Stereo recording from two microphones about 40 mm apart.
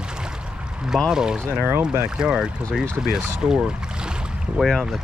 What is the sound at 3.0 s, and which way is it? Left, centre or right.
Speech, right.